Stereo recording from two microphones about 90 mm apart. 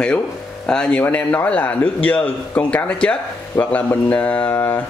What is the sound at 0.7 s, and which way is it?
Speech, 10° left (ahead or behind).